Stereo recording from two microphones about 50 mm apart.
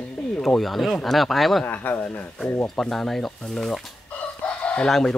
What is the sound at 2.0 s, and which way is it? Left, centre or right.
Speech, left.